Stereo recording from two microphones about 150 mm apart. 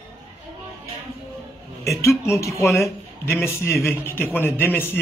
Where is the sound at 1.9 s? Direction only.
20° left (ahead or behind).